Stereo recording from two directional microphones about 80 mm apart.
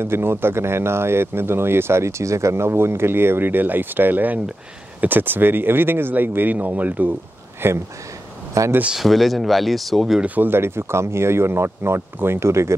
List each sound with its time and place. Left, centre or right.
0.0 s speech: right
8.6 s speech: right
8.9 s speech: centre
10.2 s speech: right